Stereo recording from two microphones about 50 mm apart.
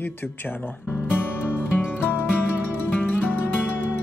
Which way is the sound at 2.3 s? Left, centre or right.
Left.